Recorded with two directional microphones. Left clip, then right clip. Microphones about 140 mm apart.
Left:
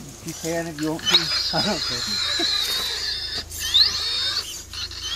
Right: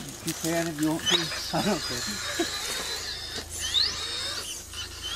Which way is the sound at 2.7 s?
50° left (ahead or behind).